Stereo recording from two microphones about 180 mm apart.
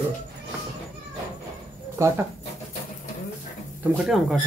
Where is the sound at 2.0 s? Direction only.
15° right (ahead or behind).